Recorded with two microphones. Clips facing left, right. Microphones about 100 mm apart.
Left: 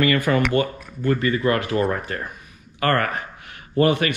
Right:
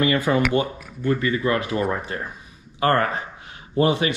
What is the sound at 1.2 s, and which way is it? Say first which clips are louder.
Speech: left 1 dB; 50° left (ahead or behind).